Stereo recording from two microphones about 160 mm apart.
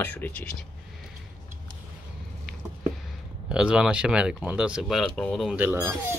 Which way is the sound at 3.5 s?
5° right (ahead or behind).